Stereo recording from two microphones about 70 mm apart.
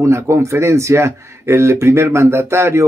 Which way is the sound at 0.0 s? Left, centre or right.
Right.